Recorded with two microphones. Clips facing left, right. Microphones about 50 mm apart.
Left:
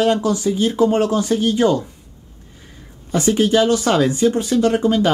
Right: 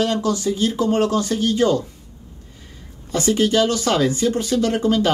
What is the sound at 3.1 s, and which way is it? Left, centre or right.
Speech, left.